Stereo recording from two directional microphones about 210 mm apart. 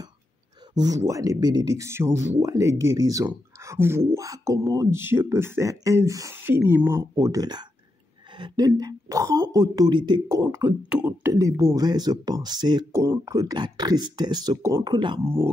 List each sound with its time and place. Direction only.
0.7 s speech: 15° right (ahead or behind)